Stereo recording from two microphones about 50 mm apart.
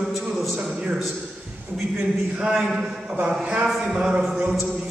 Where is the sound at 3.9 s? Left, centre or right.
Centre.